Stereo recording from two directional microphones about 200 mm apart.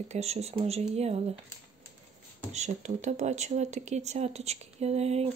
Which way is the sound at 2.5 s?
35° right (ahead or behind).